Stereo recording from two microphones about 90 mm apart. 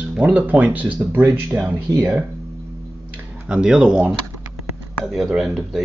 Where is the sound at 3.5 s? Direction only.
10° right (ahead or behind).